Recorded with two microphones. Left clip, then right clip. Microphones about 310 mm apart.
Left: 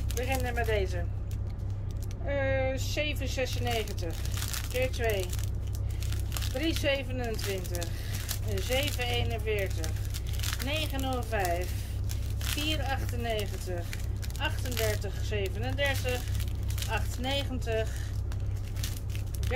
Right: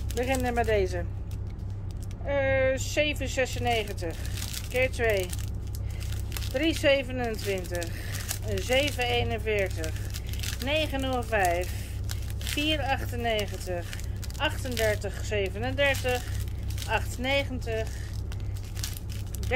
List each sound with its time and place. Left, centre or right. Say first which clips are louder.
0.2 s speech: right 5 dB; centre
2.2 s speech: right 5 dB; centre
6.6 s speech: right 6 dB; centre
12.6 s speech: right 6 dB; centre